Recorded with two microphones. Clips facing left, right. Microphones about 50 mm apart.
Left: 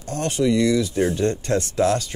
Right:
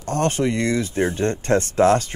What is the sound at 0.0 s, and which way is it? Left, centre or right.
Speech, right.